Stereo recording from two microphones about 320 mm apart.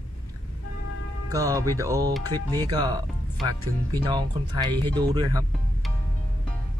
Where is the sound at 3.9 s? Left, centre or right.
Centre.